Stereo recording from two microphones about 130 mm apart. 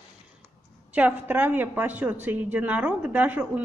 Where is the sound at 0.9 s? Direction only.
15° right (ahead or behind).